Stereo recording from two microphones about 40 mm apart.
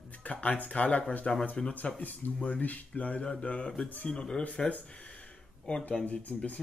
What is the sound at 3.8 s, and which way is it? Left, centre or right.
Speech, left.